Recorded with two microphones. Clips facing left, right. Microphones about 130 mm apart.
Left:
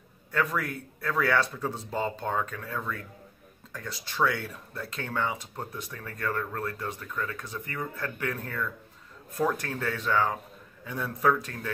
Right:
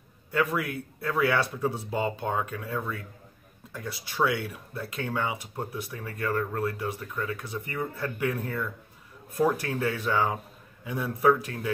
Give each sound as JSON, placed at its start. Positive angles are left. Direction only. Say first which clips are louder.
{"t": 0.3, "sound": "speech", "louder": "right 2 dB", "side_deg": -10}